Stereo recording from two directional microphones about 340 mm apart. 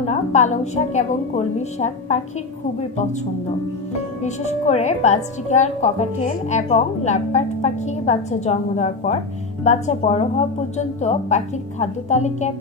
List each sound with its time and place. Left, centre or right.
0.0 s a woman's voice: centre
4.2 s a woman's voice: centre